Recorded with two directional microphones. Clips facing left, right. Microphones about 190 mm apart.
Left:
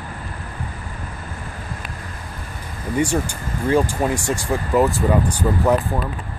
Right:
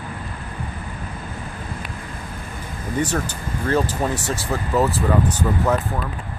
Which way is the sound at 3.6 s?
10° left (ahead or behind).